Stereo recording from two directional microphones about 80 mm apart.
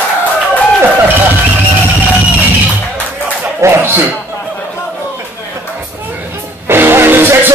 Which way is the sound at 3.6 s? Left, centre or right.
Right.